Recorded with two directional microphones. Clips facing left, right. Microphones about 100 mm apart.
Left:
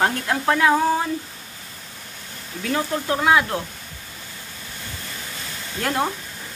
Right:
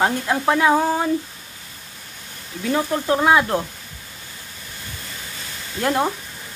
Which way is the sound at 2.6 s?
20° right (ahead or behind).